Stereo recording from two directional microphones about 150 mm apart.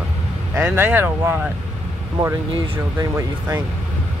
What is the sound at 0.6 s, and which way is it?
Speech, 10° right (ahead or behind).